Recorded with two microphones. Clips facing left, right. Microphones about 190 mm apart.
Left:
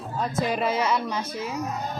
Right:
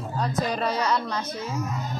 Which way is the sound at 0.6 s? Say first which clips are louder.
Even; 5° left (ahead or behind).